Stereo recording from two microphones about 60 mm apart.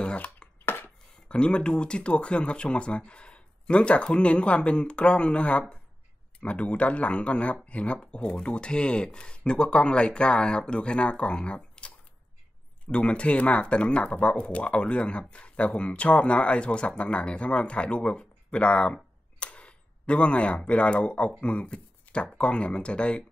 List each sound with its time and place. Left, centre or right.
0.0 s a sound: centre
0.7 s chopping: left
1.3 s speech: centre